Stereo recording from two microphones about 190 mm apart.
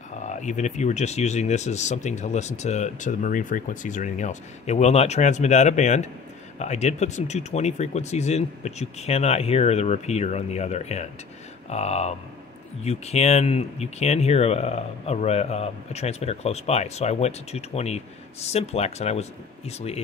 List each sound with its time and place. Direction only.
0.2 s speech: 40° left (ahead or behind)